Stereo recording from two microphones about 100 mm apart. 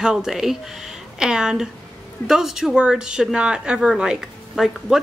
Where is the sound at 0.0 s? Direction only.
5° right (ahead or behind).